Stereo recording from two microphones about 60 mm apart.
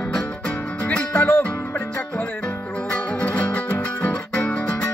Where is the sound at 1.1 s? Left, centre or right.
Left.